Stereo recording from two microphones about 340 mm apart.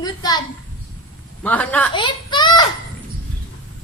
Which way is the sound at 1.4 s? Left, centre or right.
Centre.